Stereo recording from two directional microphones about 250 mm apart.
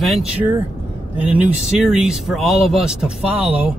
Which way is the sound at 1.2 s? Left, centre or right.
Centre.